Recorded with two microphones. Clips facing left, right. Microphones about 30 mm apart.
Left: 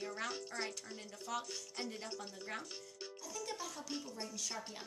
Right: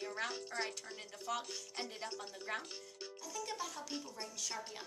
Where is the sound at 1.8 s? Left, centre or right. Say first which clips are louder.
Even; right.